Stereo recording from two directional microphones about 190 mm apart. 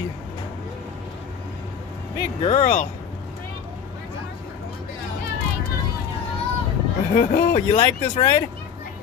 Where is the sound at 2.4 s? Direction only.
40° left (ahead or behind).